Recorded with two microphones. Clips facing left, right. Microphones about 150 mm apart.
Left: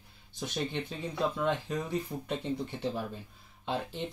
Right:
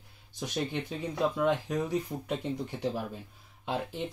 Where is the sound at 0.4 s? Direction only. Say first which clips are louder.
Right 1 dB; 5° right (ahead or behind).